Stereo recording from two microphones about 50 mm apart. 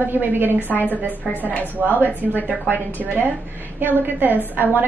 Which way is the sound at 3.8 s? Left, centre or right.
Right.